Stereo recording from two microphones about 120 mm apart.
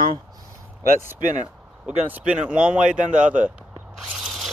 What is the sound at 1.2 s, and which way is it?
Speech, 90° right.